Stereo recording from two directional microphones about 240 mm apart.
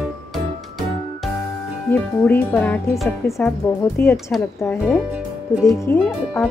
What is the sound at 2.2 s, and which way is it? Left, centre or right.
Speech, centre.